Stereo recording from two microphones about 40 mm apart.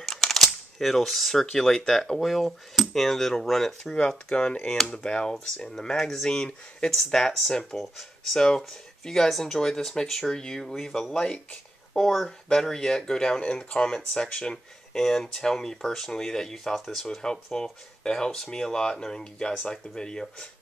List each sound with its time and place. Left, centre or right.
0.0 s a sound: centre
1.4 s speech: centre
2.1 s cutlery: centre
3.9 s speech: centre
6.2 s speech: centre
7.7 s cutlery: centre
9.0 s speech: centre
11.9 s speech: centre
17.5 s speech: left